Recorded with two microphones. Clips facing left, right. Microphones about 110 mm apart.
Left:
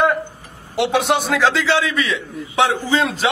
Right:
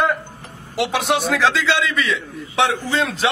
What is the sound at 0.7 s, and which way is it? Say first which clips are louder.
A man's voice: left 2 dB; centre (ahead or behind).